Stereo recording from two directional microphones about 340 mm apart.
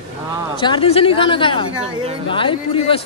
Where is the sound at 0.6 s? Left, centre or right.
Centre.